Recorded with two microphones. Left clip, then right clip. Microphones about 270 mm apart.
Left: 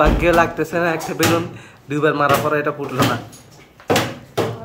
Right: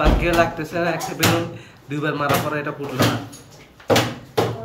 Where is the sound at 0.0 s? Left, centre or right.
Centre.